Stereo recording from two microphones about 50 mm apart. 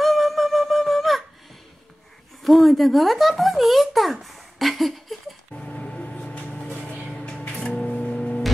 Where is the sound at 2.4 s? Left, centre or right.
Centre.